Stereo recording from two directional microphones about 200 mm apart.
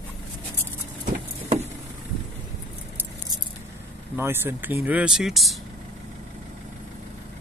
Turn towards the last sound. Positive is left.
turn(degrees=0)  # may be behind; listen again after turning